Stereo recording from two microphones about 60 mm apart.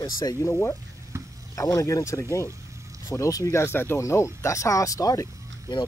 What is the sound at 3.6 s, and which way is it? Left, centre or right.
Speech, left.